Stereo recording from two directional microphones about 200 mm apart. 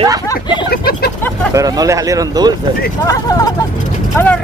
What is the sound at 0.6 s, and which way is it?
Speech, 50° left (ahead or behind).